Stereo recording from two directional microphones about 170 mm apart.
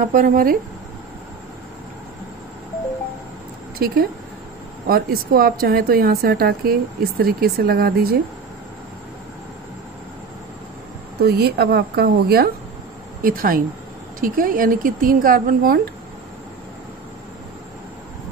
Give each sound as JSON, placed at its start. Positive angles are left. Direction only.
{"t": 0.1, "sound": "speech", "side_deg": -55}
{"t": 3.7, "sound": "speech", "side_deg": -60}
{"t": 11.1, "sound": "a woman's voice", "side_deg": -70}
{"t": 13.2, "sound": "speech", "side_deg": -55}